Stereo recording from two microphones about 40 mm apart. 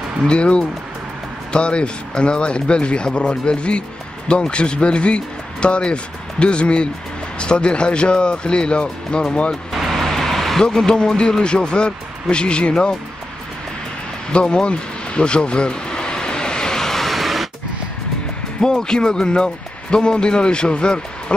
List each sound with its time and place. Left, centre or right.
0.3 s speech: left
9.7 s vehicle: centre
10.6 s speech: centre
14.3 s vehicle: left; by 17.5 s centre
18.6 s speech: centre